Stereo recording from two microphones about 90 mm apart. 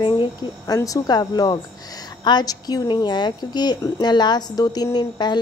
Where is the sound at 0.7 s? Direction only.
40° left (ahead or behind).